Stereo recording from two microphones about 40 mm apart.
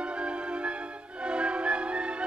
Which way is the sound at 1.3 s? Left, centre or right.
Right.